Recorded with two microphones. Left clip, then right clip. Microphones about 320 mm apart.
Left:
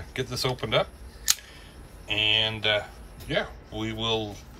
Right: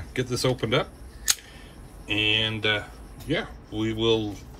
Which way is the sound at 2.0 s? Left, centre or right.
Centre.